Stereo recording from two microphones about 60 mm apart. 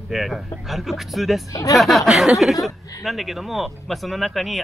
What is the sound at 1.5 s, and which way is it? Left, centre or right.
Speech, left.